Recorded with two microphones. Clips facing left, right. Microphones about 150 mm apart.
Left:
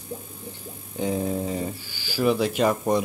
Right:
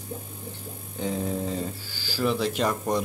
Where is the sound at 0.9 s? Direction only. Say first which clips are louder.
Left 3 dB; 10° left (ahead or behind).